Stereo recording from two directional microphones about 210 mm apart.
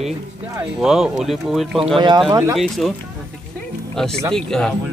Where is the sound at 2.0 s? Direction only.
20° right (ahead or behind).